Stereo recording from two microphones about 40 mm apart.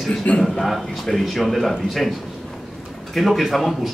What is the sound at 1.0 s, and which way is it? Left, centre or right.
Speech, centre.